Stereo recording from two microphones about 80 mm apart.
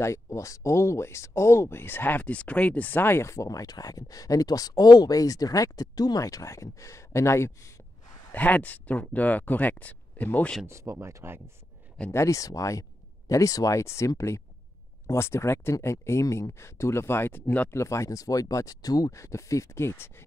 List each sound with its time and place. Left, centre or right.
0.0 s speech: left
8.3 s speech: centre
10.7 s speech: right
12.1 s speech: left
17.7 s speech: left